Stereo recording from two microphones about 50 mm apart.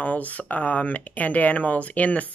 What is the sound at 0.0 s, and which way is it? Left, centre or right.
Speech, left.